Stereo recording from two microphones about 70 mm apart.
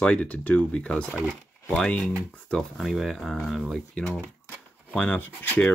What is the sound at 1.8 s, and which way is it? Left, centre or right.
Speech, centre.